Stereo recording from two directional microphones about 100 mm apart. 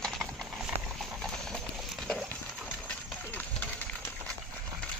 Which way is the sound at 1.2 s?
5° left (ahead or behind).